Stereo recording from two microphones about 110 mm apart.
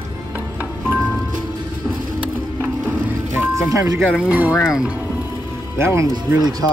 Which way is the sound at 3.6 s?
30° right (ahead or behind).